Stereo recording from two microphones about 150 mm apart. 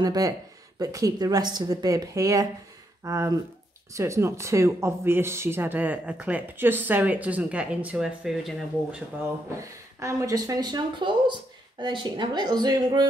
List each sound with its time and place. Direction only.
0.0 s speech: 25° right (ahead or behind); by 9.0 s 5° right (ahead or behind)
9.6 s speech: 20° right (ahead or behind)